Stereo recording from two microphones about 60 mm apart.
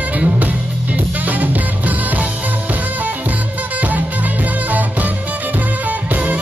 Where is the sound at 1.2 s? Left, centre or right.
Right.